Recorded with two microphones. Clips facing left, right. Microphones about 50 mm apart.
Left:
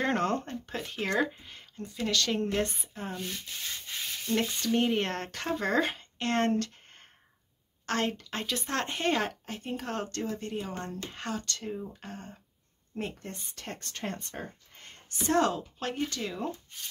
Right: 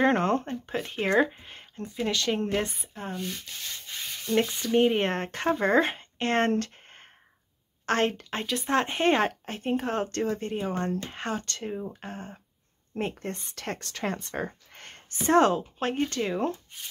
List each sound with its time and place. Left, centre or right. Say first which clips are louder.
0.0 s speech: right 5 dB; centre
2.7 s speech: right 2 dB; centre
4.5 s speech: left 1 dB; centre
4.7 s speech: right 6 dB; right
6.5 s a sound: right 2 dB; right
7.8 s a woman's voice: right 5 dB; right
8.6 s speech: right 7 dB; centre; by 9.8 s right
9.8 s speech: right 6 dB; right
10.1 s speech: right 6 dB; right
10.4 s speech: right 6 dB; right
13.5 s speech: right 6 dB; right
15.1 s speech: right 5 dB; right